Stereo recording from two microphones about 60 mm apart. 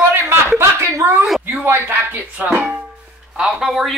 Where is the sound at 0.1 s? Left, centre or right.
Right.